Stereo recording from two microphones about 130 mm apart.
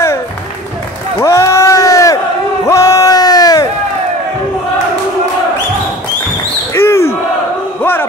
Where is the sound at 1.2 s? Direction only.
20° left (ahead or behind).